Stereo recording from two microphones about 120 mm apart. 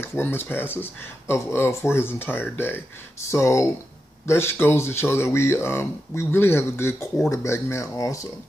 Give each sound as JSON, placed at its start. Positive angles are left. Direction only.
{"t": 0.0, "sound": "speech", "side_deg": 20}